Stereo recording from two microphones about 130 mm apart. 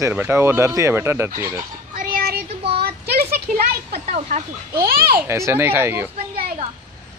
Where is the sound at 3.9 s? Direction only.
60° right (ahead or behind).